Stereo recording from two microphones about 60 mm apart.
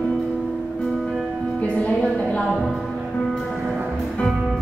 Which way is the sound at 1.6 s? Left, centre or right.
Left.